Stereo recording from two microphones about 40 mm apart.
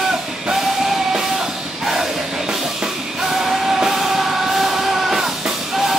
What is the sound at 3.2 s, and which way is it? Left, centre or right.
Music, centre.